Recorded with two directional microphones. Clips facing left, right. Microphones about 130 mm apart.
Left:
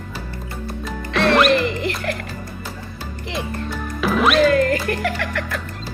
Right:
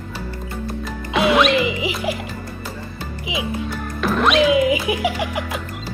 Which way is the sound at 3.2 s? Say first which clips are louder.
Right 2 dB; 5° right (ahead or behind).